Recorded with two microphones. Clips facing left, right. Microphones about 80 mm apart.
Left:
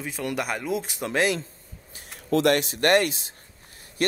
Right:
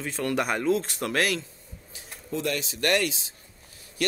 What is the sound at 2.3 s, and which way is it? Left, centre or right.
Speech, left.